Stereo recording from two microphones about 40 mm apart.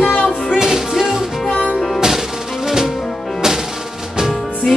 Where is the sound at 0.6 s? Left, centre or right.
Centre.